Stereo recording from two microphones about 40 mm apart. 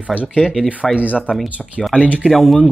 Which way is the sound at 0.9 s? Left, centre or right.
Right.